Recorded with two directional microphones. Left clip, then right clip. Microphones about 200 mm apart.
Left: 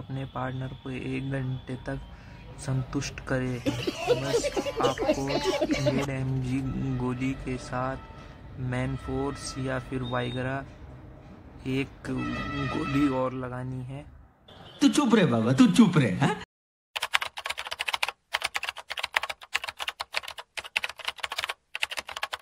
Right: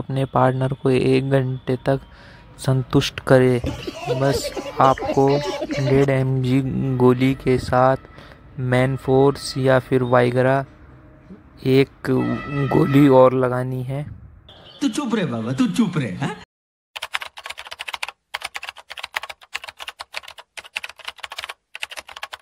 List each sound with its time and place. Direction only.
0.1 s speech: 45° right (ahead or behind)
3.6 s speech: centre (ahead or behind)
6.0 s speech: 40° right (ahead or behind)
14.8 s speech: centre (ahead or behind)
16.9 s computer keyboard: centre (ahead or behind)